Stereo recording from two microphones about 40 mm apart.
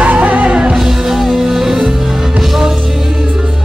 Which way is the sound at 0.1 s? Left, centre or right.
Right.